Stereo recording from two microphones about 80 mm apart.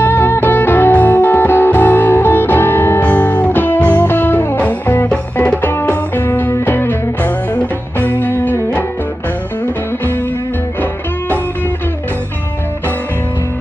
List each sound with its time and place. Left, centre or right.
0.0 s music: left
5.1 s music: centre
5.6 s music: left